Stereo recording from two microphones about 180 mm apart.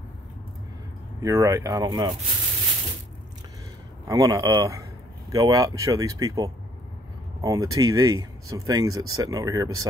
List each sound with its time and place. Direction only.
1.2 s speech: 15° right (ahead or behind)
4.1 s speech: 20° right (ahead or behind)